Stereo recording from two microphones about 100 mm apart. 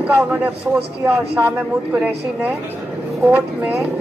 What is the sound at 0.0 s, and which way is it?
A woman's voice, 15° right (ahead or behind).